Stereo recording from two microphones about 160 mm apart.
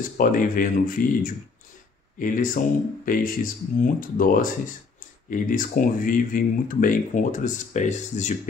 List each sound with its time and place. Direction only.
0.2 s speech: 60° left (ahead or behind)